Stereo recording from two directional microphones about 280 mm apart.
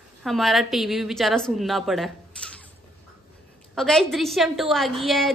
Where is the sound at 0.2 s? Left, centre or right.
Centre.